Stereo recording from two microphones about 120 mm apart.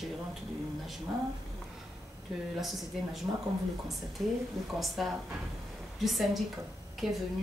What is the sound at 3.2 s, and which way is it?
Speech, 20° right (ahead or behind).